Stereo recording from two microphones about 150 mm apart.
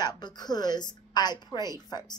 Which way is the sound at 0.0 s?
25° left (ahead or behind).